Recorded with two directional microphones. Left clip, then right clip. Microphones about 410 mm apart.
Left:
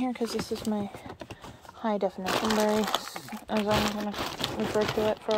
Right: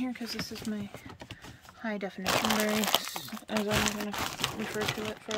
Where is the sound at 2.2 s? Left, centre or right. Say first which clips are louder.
Left 2 dB; right.